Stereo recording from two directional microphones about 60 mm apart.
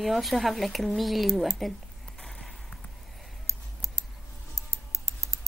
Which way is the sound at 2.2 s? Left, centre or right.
Centre.